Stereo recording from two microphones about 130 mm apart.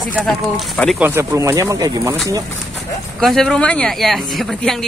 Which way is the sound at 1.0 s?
20° right (ahead or behind).